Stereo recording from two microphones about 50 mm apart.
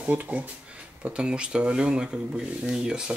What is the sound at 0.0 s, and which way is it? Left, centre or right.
Speech, right.